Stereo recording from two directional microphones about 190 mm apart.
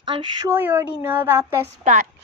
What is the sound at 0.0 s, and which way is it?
Speech, 25° right (ahead or behind).